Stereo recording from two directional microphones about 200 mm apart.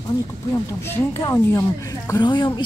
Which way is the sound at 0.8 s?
15° left (ahead or behind).